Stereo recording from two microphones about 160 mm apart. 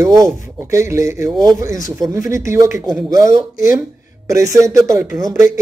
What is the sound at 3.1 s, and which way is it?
Speech, 20° right (ahead or behind).